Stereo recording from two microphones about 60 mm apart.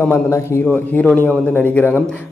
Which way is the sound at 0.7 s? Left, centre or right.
Left.